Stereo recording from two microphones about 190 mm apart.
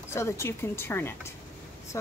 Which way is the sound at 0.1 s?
15° left (ahead or behind).